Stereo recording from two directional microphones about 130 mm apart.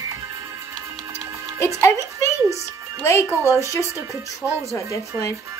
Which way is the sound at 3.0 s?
20° left (ahead or behind).